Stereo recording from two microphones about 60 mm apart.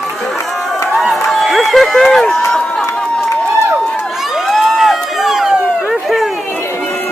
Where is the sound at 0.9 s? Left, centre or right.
Centre.